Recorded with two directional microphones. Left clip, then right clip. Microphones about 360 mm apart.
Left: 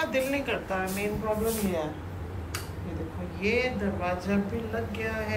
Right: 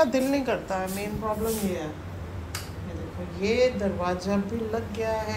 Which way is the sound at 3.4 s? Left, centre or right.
Centre.